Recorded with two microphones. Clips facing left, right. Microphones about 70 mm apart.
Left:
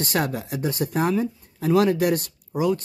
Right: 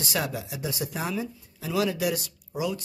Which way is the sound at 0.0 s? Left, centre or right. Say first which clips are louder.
Left 5 dB; left.